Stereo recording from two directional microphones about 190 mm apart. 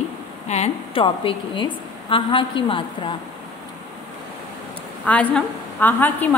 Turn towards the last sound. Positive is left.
turn(degrees=10)  # may be behind; listen again after turning